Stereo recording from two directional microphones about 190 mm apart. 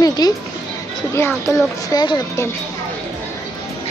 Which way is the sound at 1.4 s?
20° left (ahead or behind).